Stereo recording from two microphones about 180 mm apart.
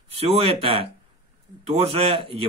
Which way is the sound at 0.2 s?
30° right (ahead or behind).